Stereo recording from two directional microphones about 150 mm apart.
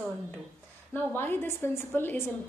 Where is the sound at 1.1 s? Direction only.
15° left (ahead or behind).